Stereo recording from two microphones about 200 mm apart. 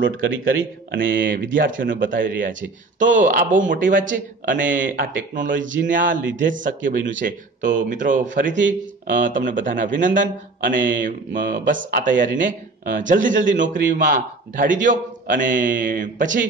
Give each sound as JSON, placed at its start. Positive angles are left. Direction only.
{"t": 0.0, "sound": "a man's voice", "side_deg": -70}
{"t": 1.0, "sound": "speech", "side_deg": -45}
{"t": 1.8, "sound": "a man's voice", "side_deg": -70}
{"t": 3.0, "sound": "a man's voice", "side_deg": -40}